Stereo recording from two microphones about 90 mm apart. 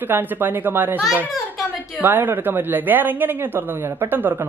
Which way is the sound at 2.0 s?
20° right (ahead or behind).